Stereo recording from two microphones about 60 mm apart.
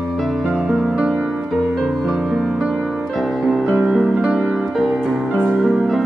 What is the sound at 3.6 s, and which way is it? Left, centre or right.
Music, centre.